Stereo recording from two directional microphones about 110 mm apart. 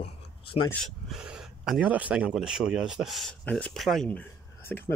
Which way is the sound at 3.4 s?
10° left (ahead or behind).